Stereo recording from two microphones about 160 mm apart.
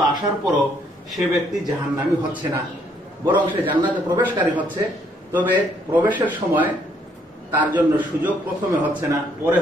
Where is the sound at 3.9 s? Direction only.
10° right (ahead or behind).